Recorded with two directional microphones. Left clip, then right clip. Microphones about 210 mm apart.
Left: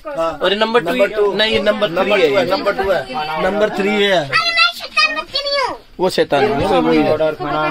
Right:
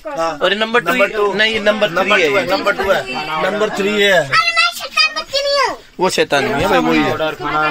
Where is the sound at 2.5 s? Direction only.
15° left (ahead or behind).